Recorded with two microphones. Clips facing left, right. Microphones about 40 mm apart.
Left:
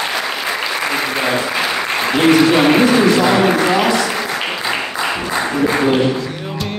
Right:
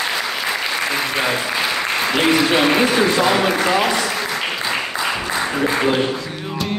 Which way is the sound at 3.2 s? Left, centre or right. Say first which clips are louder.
Left 3 dB; centre.